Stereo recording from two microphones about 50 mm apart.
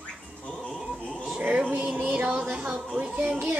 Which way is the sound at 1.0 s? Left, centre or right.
Left.